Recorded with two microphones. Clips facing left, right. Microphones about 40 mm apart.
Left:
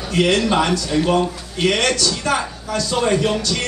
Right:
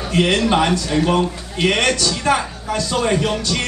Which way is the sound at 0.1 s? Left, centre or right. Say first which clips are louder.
Even; centre.